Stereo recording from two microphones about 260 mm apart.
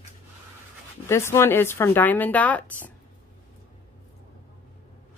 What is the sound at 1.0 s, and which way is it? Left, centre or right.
Speech, centre.